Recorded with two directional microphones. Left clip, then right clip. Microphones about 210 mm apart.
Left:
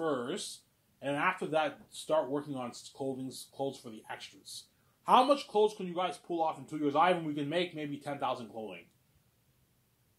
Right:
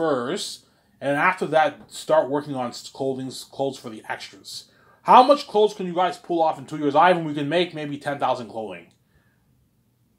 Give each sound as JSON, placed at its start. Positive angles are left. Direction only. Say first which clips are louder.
{"t": 0.0, "sound": "speech", "louder": "right 11 dB", "side_deg": -20}